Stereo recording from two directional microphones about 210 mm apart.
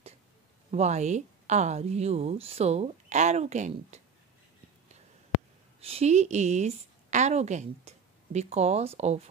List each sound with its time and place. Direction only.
0.7 s speech: 30° right (ahead or behind)
5.8 s a woman's voice: 30° right (ahead or behind)